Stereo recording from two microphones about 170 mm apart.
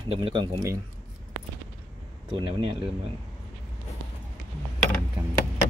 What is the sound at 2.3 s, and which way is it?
Speech, 30° right (ahead or behind).